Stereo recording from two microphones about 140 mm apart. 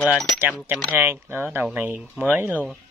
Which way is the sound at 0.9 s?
15° right (ahead or behind).